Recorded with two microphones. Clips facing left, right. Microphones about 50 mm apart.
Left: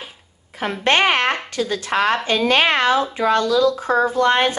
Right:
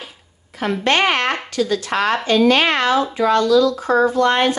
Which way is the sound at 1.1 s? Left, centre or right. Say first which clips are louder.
Even; left.